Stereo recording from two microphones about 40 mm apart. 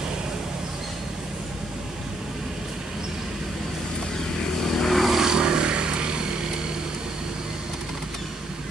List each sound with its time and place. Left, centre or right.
4.7 s vehicle: centre
5.0 s vehicle: centre